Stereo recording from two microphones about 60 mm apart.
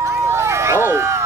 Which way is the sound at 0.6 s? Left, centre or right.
Right.